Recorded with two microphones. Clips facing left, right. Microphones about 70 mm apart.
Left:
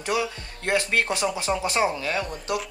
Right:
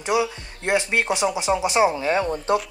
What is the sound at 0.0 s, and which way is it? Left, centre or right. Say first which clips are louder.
Speech: right 4 dB; centre.